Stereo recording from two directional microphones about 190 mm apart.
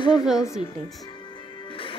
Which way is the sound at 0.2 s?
5° right (ahead or behind).